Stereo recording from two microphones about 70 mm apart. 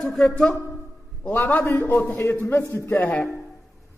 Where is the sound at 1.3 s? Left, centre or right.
Left.